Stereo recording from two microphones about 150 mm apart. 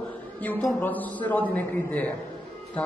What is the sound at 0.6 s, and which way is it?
A woman's voice, 10° left (ahead or behind).